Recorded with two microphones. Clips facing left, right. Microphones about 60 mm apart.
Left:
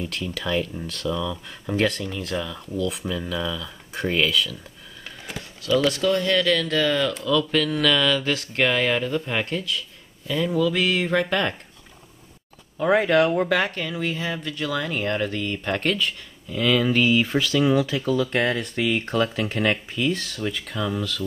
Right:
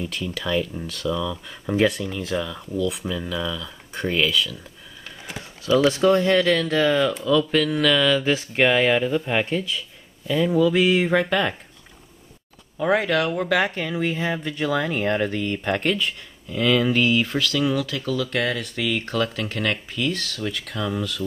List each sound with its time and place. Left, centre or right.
0.0 s speech: centre
5.6 s speech: centre
7.5 s speech: centre
11.2 s speech: centre
12.8 s speech: centre
13.7 s speech: centre